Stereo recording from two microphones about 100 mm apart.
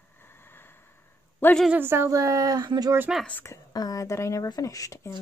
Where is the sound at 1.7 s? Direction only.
25° right (ahead or behind); by 2.9 s 45° right (ahead or behind).